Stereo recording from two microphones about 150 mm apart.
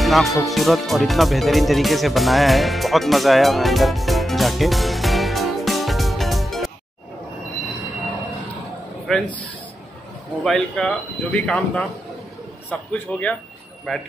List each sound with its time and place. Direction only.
0.0 s speech: centre (ahead or behind)
9.0 s a man's voice: centre (ahead or behind)
10.4 s a man's voice: 5° left (ahead or behind)